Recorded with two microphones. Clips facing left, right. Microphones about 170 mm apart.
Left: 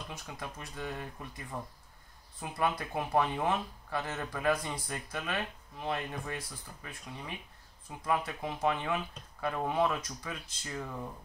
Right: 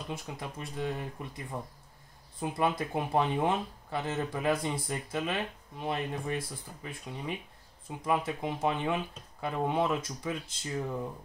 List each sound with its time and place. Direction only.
0.1 s speech: 25° right (ahead or behind)